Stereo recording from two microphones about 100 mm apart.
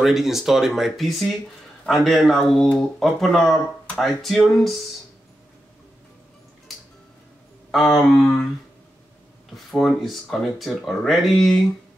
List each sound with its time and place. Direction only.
0.0 s speech: 5° right (ahead or behind)
7.7 s speech: centre (ahead or behind)
9.7 s speech: centre (ahead or behind)